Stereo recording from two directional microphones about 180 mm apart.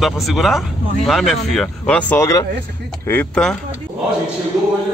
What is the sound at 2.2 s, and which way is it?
Speech, 20° left (ahead or behind).